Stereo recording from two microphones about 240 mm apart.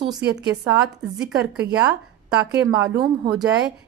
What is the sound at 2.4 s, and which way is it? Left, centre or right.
Speech, centre.